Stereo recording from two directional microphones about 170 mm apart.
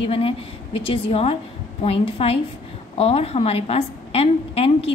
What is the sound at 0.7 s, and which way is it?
A woman's voice, 30° left (ahead or behind).